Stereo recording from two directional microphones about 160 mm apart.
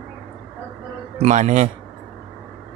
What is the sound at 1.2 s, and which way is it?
Speech, 45° right (ahead or behind).